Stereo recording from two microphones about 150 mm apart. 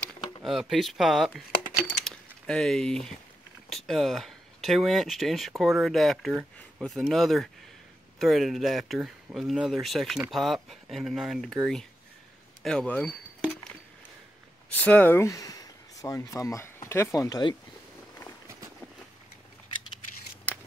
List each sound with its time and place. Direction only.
0.4 s speech: centre (ahead or behind)
1.9 s keys jangling: 5° left (ahead or behind)
3.7 s speech: centre (ahead or behind)
14.7 s speech: 10° left (ahead or behind); by 17.6 s 25° left (ahead or behind)